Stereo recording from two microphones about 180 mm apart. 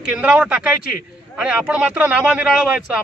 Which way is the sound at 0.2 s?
5° right (ahead or behind).